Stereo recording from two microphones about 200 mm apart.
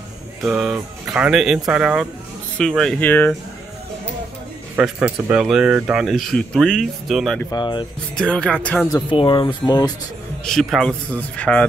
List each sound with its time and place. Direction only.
0.5 s speech: 5° right (ahead or behind)
4.7 s speech: 5° right (ahead or behind)
7.5 s speech: 20° left (ahead or behind)
8.2 s speech: 5° left (ahead or behind)
8.9 s speech: 25° left (ahead or behind)
10.4 s speech: centre (ahead or behind)